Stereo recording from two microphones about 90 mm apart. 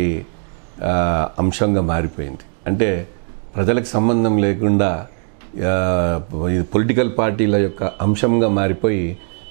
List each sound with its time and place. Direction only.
0.7 s speech: 15° right (ahead or behind)